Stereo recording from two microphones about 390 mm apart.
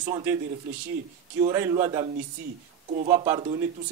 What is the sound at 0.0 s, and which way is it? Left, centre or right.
Speech, centre.